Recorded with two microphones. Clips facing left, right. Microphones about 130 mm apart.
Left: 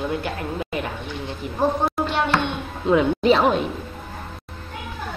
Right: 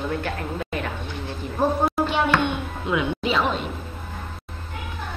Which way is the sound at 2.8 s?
35° left (ahead or behind).